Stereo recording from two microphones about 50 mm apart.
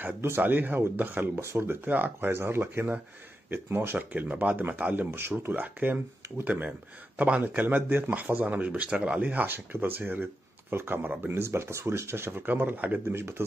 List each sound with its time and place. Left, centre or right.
0.0 s speech: right
0.4 s speech: right
1.3 s speech: right
1.7 s speech: right
4.0 s speech: right
4.9 s speech: right
7.4 s speech: right
11.4 s speech: right
13.1 s speech: right